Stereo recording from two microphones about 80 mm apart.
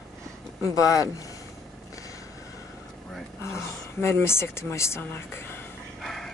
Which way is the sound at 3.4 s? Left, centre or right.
Left.